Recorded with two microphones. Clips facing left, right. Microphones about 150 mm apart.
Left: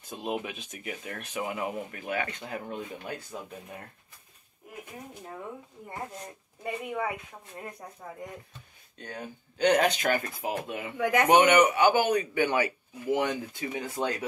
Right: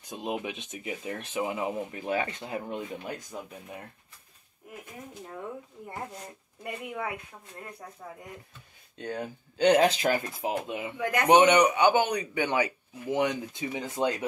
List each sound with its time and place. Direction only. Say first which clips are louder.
0.0 s speech: even; 15° right (ahead or behind)
6.2 s speech: left 3 dB; centre (ahead or behind)
9.0 s speech: right 5 dB; 30° right (ahead or behind)